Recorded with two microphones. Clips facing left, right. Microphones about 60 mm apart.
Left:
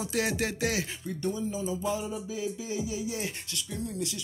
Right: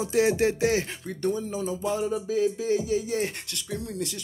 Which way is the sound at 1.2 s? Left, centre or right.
Right.